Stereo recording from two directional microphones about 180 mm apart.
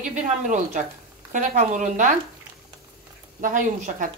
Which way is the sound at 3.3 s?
45° right (ahead or behind).